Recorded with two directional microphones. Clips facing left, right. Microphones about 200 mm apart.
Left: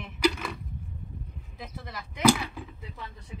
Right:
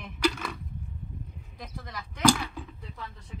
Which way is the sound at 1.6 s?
5° left (ahead or behind).